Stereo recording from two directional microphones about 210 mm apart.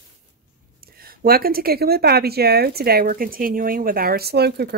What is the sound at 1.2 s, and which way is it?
Speech, 45° right (ahead or behind).